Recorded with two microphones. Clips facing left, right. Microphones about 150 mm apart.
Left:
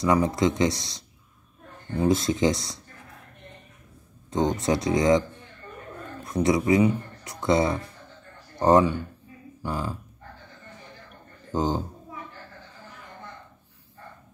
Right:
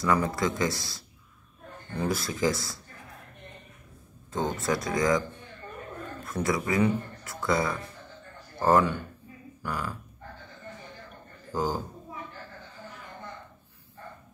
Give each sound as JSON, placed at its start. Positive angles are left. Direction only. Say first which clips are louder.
{"t": 0.0, "sound": "speech", "louder": "left 4 dB", "side_deg": 20}
{"t": 4.3, "sound": "speech", "louder": "left 5 dB", "side_deg": 20}
{"t": 6.2, "sound": "speech", "louder": "left 7 dB", "side_deg": 20}
{"t": 11.5, "sound": "speech", "louder": "left 4 dB", "side_deg": 25}